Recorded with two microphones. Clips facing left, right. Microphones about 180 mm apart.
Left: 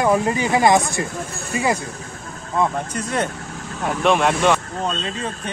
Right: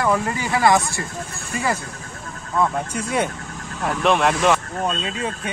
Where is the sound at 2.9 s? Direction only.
10° right (ahead or behind).